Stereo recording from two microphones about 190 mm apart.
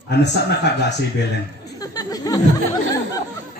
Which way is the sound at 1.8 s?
20° left (ahead or behind).